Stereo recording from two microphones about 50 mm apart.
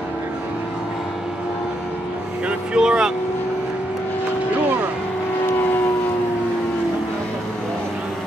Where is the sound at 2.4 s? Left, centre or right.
Centre.